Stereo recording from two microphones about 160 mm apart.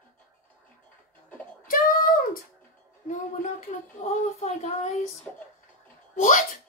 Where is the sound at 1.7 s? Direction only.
60° left (ahead or behind).